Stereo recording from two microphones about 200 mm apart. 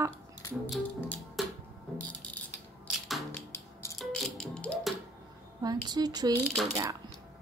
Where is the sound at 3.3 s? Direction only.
10° left (ahead or behind).